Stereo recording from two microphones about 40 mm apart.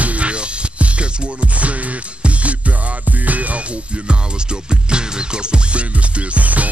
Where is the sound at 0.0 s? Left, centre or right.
Right.